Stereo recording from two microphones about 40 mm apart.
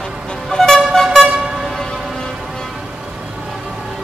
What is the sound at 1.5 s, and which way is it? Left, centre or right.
Vehicle, centre.